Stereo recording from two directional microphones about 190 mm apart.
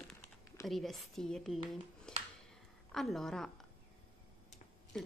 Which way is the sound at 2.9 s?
Centre (ahead or behind).